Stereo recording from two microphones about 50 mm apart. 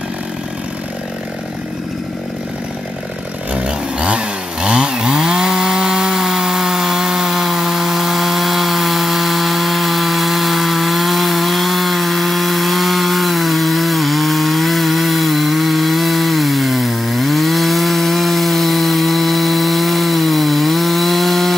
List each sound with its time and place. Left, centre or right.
3.6 s chainsaw: right; by 21.5 s centre